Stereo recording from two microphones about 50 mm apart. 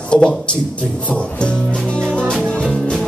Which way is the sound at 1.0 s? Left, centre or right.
Left.